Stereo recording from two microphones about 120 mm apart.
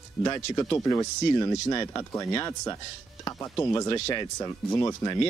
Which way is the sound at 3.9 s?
40° left (ahead or behind).